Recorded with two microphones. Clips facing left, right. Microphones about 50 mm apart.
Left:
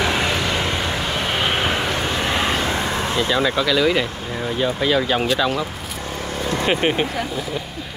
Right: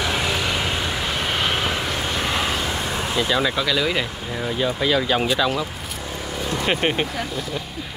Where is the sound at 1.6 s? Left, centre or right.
Left.